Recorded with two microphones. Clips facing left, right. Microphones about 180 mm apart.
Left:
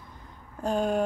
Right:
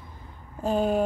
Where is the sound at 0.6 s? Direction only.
5° right (ahead or behind).